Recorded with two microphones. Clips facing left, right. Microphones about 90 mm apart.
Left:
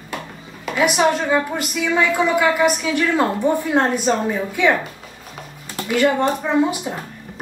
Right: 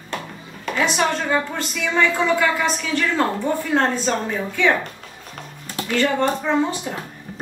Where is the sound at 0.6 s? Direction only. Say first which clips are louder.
Left 4 dB; 5° left (ahead or behind).